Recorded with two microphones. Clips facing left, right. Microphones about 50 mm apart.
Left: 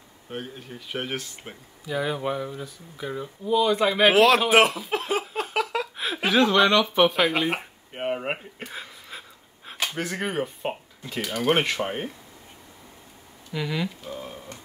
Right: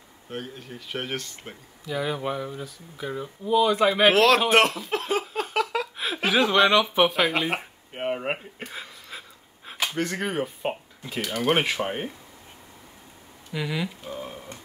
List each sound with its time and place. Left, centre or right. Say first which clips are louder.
0.3 s speech: even; centre
13.5 s speech: left 1 dB; centre